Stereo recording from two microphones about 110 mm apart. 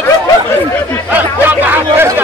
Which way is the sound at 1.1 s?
15° right (ahead or behind).